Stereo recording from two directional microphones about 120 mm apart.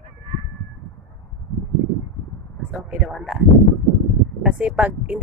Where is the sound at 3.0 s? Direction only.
5° right (ahead or behind).